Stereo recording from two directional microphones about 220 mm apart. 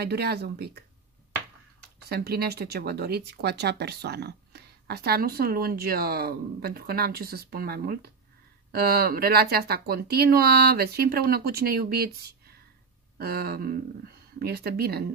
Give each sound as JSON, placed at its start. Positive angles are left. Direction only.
{"t": 0.0, "sound": "speech", "side_deg": -45}
{"t": 2.0, "sound": "speech", "side_deg": -45}